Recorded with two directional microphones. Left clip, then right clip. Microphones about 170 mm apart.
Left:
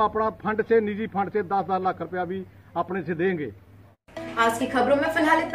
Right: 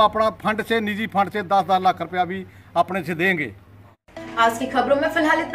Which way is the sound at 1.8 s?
15° right (ahead or behind).